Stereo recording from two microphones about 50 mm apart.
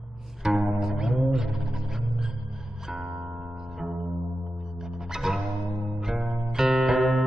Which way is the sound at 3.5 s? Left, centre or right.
Centre.